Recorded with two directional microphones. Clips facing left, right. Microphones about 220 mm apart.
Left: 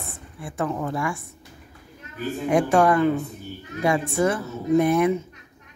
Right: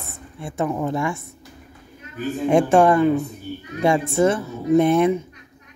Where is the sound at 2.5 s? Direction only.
25° right (ahead or behind).